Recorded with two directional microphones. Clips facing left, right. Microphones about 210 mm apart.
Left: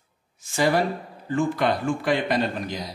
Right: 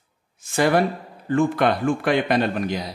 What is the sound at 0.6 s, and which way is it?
Speech, 55° right (ahead or behind).